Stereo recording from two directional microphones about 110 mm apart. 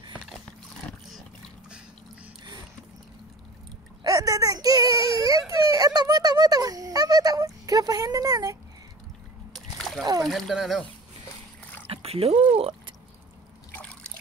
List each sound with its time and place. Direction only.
4.0 s speech: 35° right (ahead or behind)
9.5 s splash: 5° left (ahead or behind)
10.2 s speech: centre (ahead or behind)
11.9 s a sound: 65° right (ahead or behind)
12.5 s speech: 60° right (ahead or behind)